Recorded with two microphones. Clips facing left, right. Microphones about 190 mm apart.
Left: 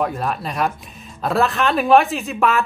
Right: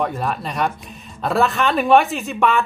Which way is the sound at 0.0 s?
Centre (ahead or behind).